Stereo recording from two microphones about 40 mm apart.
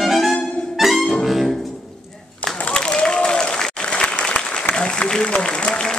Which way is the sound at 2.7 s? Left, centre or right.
Left.